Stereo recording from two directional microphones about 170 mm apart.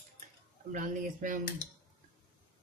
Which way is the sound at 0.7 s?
50° right (ahead or behind).